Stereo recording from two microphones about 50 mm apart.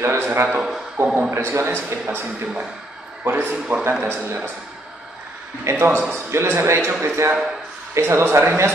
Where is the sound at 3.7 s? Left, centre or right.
Right.